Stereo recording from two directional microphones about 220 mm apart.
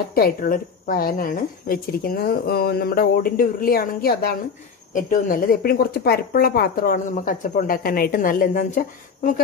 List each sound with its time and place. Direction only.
0.1 s speech: 40° left (ahead or behind)